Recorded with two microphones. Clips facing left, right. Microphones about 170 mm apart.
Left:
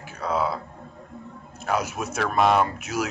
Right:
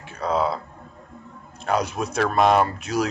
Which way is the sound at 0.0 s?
30° right (ahead or behind).